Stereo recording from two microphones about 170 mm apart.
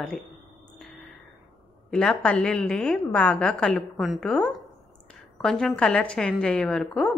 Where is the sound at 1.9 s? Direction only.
5° left (ahead or behind).